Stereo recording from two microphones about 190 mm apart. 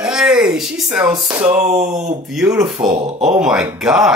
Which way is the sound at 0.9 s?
10° right (ahead or behind).